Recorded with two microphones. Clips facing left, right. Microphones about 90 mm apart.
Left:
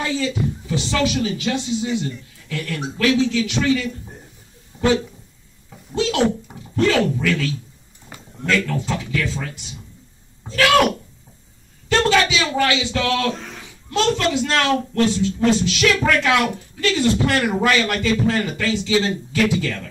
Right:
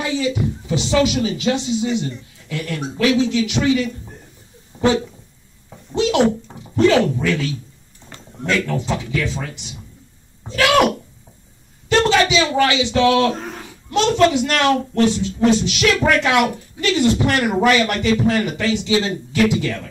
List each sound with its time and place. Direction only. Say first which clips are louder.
0.0 s speech: right 2 dB; 15° right (ahead or behind)
4.7 s a sound: right 3 dB; 30° right (ahead or behind)
6.4 s speech: right 4 dB; 20° right (ahead or behind)
11.9 s speech: right 2 dB; 20° right (ahead or behind)
13.3 s a sound: right 3 dB; 45° right (ahead or behind)
13.8 s speech: right 4 dB; 20° right (ahead or behind)